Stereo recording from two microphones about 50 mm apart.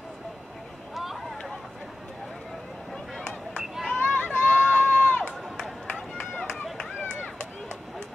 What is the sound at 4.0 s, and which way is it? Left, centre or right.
Run, left.